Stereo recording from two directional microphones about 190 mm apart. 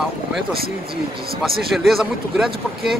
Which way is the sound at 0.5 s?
50° right (ahead or behind).